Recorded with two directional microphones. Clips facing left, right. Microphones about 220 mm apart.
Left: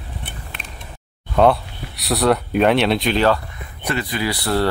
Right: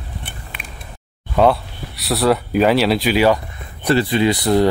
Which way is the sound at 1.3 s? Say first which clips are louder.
Even; centre (ahead or behind).